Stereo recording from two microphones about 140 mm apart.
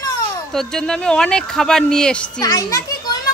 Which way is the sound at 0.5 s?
5° left (ahead or behind).